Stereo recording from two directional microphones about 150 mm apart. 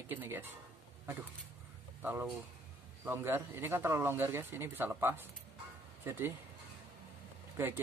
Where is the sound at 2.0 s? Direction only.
10° right (ahead or behind).